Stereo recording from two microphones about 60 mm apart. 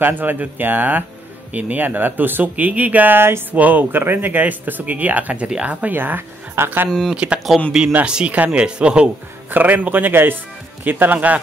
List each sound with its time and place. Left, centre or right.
0.0 s speech: right
3.5 s speech: right
6.9 s speech: centre
7.5 s speech: centre
9.5 s speech: right